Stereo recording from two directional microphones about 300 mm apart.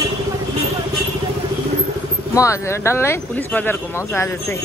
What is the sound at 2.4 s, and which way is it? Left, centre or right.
Speech, centre.